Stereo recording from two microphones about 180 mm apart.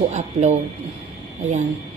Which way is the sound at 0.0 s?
40° right (ahead or behind).